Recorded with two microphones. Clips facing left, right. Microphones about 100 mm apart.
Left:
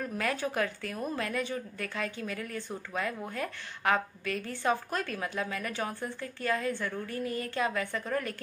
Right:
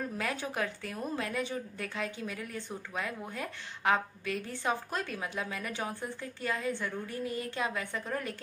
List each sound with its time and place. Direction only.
0.2 s a woman's voice: 20° right (ahead or behind)